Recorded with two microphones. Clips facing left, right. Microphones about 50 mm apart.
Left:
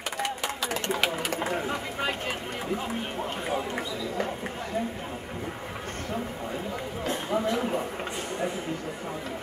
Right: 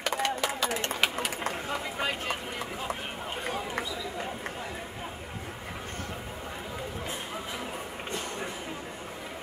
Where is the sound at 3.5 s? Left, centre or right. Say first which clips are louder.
Left 3 dB; centre.